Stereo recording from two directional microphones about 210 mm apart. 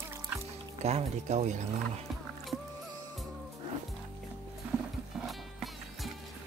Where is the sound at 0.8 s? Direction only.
30° right (ahead or behind).